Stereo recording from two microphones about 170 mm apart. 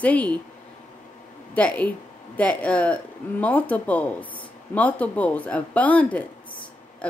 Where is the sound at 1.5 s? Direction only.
10° left (ahead or behind).